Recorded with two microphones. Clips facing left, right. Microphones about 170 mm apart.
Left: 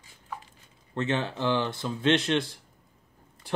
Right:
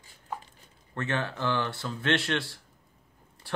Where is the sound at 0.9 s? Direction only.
20° left (ahead or behind).